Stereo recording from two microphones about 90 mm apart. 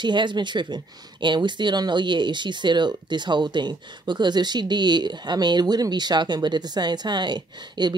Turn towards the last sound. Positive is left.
turn(degrees=-55)  # may be behind; listen again after turning